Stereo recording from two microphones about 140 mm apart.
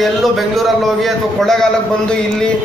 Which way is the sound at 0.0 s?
Centre (ahead or behind).